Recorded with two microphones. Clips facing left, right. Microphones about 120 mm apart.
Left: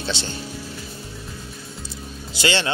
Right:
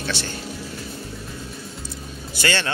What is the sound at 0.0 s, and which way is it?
Speech, 20° left (ahead or behind).